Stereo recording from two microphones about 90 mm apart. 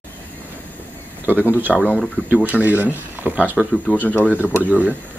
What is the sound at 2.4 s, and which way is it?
Speech, 20° right (ahead or behind).